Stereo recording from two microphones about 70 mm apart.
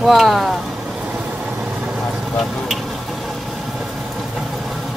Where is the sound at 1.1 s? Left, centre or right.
Centre.